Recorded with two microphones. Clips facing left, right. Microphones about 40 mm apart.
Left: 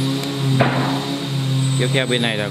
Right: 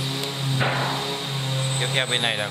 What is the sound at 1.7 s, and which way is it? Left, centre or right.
Speech, centre.